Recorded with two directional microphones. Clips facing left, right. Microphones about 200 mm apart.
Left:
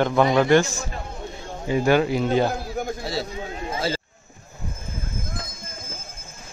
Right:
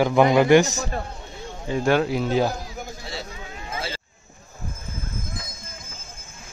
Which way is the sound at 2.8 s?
60° left (ahead or behind).